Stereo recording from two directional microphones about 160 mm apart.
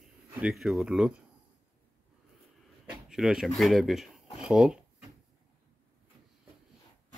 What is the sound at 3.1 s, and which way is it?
Speech, 5° right (ahead or behind).